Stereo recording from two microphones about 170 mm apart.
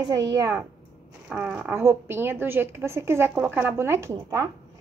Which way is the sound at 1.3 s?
10° right (ahead or behind).